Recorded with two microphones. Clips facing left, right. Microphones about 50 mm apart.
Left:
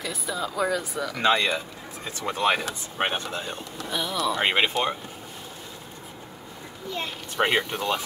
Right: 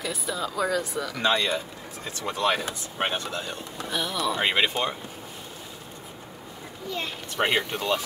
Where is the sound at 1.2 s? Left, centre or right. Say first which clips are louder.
Left 2 dB; left.